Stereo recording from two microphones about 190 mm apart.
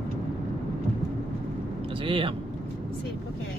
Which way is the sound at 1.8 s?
30° right (ahead or behind).